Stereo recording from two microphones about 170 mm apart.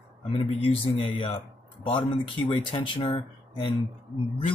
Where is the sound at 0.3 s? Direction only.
35° left (ahead or behind).